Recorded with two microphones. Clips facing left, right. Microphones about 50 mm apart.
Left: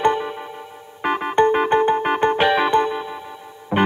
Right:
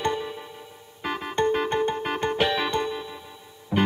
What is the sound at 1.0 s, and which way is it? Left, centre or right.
Music, left.